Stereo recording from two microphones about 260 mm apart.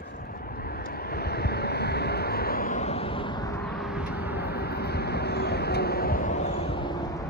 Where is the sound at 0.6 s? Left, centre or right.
Left; by 3.6 s centre.